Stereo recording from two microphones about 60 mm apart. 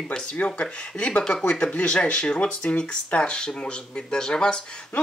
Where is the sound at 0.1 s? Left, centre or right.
Centre.